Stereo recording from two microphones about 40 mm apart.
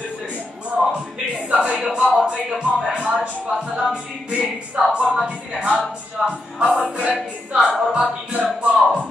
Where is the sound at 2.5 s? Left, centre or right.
Centre.